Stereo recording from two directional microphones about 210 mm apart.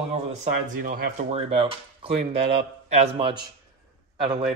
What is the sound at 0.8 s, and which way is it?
Speech, 40° right (ahead or behind).